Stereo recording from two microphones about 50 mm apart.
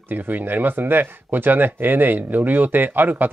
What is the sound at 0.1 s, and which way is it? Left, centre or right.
Speech, right.